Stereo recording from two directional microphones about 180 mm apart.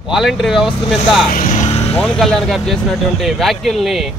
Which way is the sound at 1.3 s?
45° left (ahead or behind).